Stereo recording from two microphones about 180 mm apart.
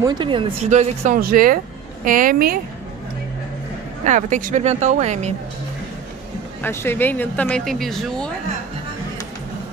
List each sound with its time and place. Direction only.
0.0 s speech: 25° right (ahead or behind)
0.7 s speech: 40° right (ahead or behind)
4.0 s speech: 45° right (ahead or behind)
6.6 s speech: 10° left (ahead or behind)